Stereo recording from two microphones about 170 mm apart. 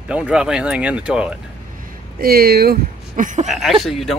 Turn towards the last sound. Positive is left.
turn(degrees=0)  # may be behind; listen again after turning